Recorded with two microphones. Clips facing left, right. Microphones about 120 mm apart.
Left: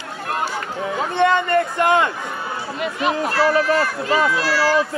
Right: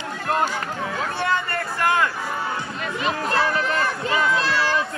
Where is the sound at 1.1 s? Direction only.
20° left (ahead or behind).